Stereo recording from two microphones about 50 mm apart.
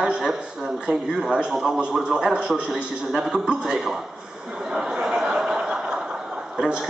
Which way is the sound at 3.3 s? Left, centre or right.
Centre.